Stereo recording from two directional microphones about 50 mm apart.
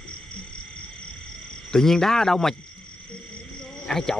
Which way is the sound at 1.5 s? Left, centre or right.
Centre.